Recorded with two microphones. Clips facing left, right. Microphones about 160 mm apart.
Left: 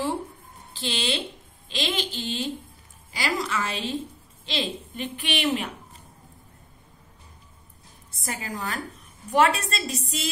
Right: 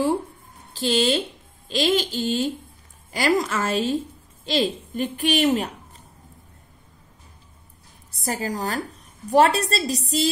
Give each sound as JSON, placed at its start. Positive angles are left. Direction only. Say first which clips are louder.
{"t": 0.7, "sound": "a woman's voice", "louder": "right 8 dB", "side_deg": -45}
{"t": 8.2, "sound": "a woman's voice", "louder": "right 6 dB", "side_deg": -35}